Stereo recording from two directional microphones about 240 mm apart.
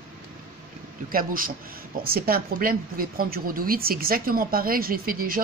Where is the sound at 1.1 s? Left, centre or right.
Right.